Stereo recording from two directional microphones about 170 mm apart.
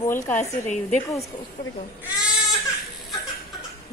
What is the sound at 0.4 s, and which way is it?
Speech, 45° left (ahead or behind).